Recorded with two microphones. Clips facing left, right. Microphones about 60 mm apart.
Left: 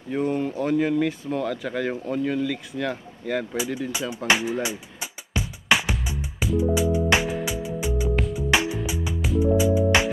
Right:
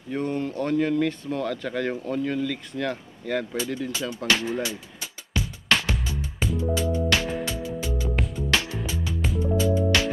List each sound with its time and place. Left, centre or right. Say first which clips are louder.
0.1 s speech: left 3 dB; centre
4.3 s music: left 2 dB; centre
8.2 s music: left 3 dB; centre
8.5 s music: left 3 dB; centre